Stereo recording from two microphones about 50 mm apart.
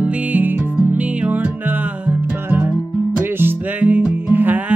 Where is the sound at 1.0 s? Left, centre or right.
Right.